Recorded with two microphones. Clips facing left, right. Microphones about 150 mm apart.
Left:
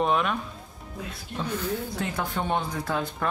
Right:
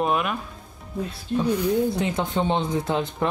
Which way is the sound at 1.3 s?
15° right (ahead or behind).